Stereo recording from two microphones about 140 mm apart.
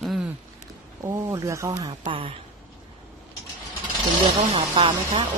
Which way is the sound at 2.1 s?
40° right (ahead or behind).